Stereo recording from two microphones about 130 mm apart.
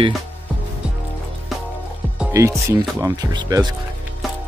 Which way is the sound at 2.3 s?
25° right (ahead or behind).